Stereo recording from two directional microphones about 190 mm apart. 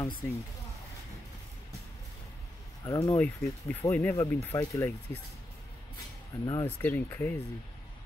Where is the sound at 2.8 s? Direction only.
20° left (ahead or behind).